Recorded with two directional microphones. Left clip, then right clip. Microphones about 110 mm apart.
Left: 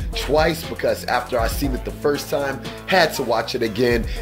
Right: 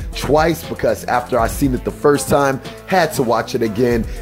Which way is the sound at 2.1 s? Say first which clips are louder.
Right 7 dB; 60° right (ahead or behind).